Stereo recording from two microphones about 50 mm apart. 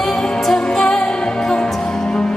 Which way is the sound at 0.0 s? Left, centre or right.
Centre.